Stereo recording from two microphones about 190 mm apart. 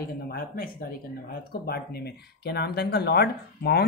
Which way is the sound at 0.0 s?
50° left (ahead or behind).